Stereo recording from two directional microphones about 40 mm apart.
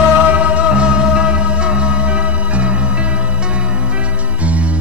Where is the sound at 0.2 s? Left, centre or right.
Right.